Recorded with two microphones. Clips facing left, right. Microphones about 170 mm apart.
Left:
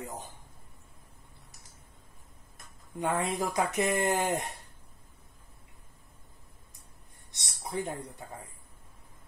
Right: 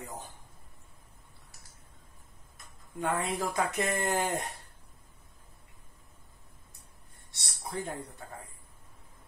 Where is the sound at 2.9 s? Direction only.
20° left (ahead or behind).